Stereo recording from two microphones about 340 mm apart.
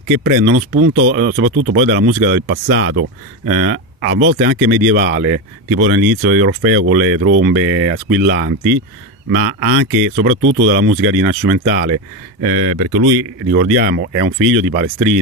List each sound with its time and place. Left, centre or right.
0.2 s speech: right
13.5 s speech: right
14.4 s speech: right